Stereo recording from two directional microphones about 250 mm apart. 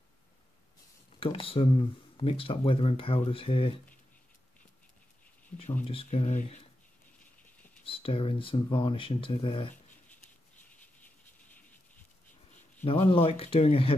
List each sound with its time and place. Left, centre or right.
1.2 s speech: left
5.5 s speech: left
7.8 s speech: left
12.8 s speech: left